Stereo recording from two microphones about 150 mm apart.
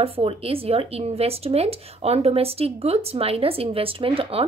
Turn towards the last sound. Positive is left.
turn(degrees=-40)  # may be behind; listen again after turning